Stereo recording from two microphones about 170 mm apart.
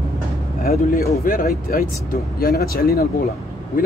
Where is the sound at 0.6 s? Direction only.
60° left (ahead or behind).